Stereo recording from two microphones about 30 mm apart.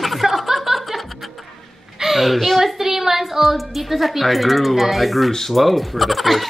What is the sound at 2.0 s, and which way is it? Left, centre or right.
Turkey, centre.